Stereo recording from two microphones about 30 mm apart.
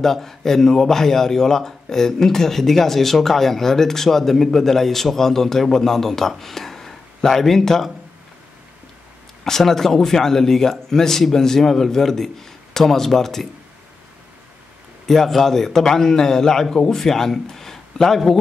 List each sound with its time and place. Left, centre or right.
0.0 s speech: centre
9.4 s speech: centre
15.0 s a man's voice: centre